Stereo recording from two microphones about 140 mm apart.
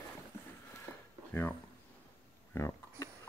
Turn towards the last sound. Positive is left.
turn(degrees=20)  # may be behind; listen again after turning